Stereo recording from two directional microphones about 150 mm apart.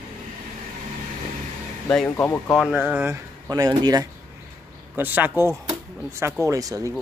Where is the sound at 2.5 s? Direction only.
5° right (ahead or behind).